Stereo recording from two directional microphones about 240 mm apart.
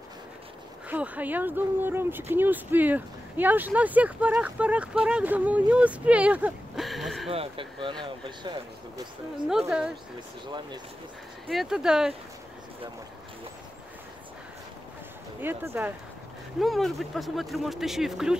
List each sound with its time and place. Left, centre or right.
0.8 s speech: centre
7.2 s speech: right
9.5 s speech: centre
11.4 s speech: centre
15.4 s speech: centre